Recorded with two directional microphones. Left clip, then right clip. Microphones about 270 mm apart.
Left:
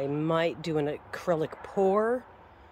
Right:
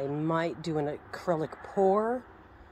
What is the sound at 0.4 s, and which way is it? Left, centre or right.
Speech, centre.